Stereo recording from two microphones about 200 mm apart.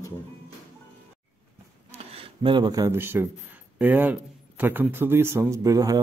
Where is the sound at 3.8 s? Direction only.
10° right (ahead or behind).